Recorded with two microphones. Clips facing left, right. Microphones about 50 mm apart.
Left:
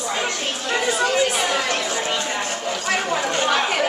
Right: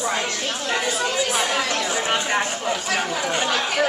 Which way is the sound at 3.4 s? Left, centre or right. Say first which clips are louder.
Left 3 dB; left.